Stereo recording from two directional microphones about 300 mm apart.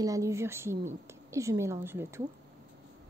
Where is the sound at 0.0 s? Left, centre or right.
Centre.